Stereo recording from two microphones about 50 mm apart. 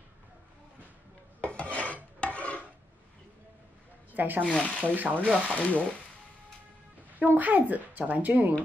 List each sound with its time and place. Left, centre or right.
1.5 s dishes: left
4.1 s speech: right
4.5 s frying: left
4.9 s speech: right
5.5 s frying: left
7.2 s speech: right